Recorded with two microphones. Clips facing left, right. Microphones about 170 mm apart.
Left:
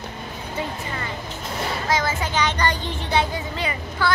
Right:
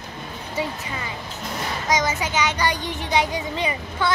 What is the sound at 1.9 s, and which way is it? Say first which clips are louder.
Speech: right 2 dB; 15° right (ahead or behind).